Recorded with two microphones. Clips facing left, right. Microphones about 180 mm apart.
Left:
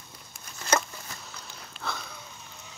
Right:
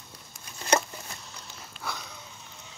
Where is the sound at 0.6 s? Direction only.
25° right (ahead or behind).